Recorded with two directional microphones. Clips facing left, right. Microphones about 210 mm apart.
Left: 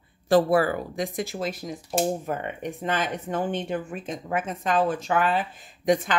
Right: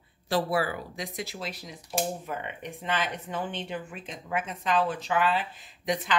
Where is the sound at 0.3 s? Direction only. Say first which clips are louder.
Left 8 dB; 50° left (ahead or behind).